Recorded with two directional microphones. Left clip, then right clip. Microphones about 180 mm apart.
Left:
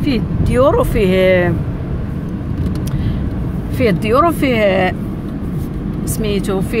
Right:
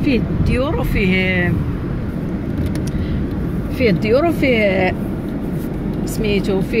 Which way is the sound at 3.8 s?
35° left (ahead or behind).